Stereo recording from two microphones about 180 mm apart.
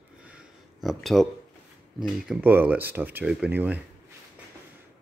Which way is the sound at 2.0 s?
5° right (ahead or behind).